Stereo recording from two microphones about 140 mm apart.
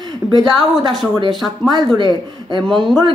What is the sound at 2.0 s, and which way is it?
Speech, 35° right (ahead or behind).